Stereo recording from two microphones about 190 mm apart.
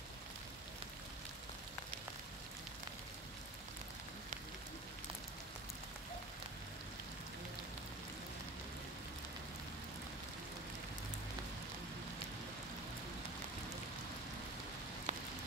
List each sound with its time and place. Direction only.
15.1 s rain on surface: 35° right (ahead or behind)